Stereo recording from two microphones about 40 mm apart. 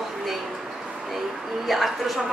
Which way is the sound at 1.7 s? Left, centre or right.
Centre.